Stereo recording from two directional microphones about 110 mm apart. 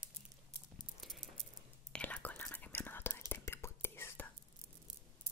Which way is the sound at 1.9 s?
10° left (ahead or behind).